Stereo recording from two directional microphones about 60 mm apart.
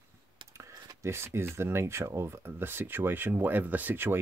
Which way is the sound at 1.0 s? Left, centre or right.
Right.